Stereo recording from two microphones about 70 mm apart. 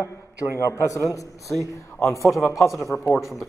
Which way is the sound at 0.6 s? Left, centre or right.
Left.